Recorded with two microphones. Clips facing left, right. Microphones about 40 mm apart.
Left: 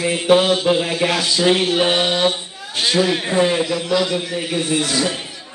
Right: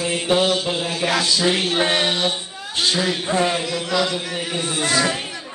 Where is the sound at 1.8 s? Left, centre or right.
Centre.